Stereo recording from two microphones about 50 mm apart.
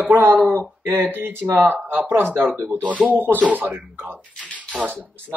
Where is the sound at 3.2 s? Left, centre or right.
Right.